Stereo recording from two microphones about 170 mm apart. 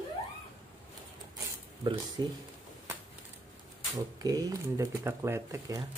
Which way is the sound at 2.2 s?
25° right (ahead or behind).